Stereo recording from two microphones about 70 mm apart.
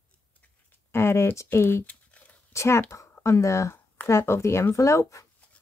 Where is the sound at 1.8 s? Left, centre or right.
Left.